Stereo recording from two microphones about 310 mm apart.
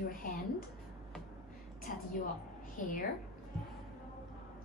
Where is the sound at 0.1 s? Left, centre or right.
Left.